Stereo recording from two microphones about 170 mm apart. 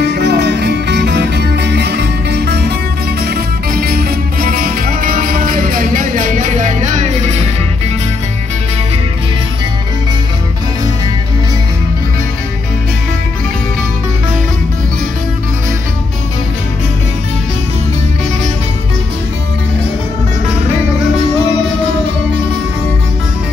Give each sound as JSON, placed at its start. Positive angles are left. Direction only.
{"t": 0.0, "sound": "music", "side_deg": -75}
{"t": 3.3, "sound": "music", "side_deg": -60}